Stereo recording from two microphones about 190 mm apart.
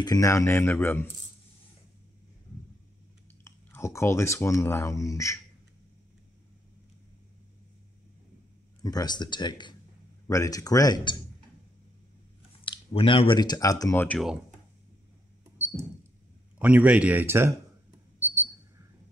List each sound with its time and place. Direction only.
0.0 s speech: 15° left (ahead or behind)
3.4 s speech: 15° left (ahead or behind)
8.8 s speech: 20° left (ahead or behind)
12.6 s speech: 25° left (ahead or behind); by 14.4 s centre (ahead or behind)
15.4 s a sound: 10° right (ahead or behind)
16.5 s a man's voice: 10° right (ahead or behind)